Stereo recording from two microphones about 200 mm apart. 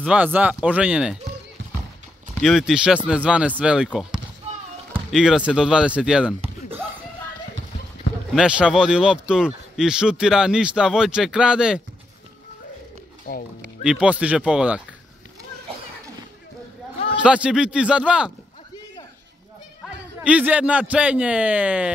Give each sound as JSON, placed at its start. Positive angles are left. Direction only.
{"t": 0.0, "sound": "a man's voice", "side_deg": -5}
{"t": 2.4, "sound": "speech", "side_deg": 0}
{"t": 5.1, "sound": "speech", "side_deg": -5}
{"t": 8.4, "sound": "speech", "side_deg": -5}
{"t": 13.3, "sound": "speech", "side_deg": 50}
{"t": 13.8, "sound": "speech", "side_deg": -5}
{"t": 17.2, "sound": "speech", "side_deg": -5}
{"t": 20.2, "sound": "a man's voice", "side_deg": -5}